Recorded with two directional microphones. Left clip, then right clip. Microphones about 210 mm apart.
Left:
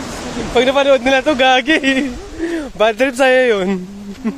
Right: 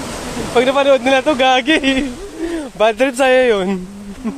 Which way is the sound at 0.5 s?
10° left (ahead or behind).